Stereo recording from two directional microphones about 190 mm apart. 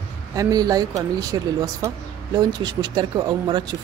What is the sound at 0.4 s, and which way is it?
Speech, 20° right (ahead or behind).